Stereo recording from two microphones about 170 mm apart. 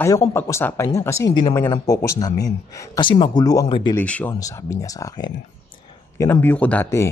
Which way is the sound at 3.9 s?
10° left (ahead or behind).